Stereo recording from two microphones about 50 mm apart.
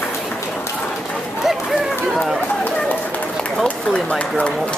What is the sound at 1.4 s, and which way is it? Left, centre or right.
Run, centre.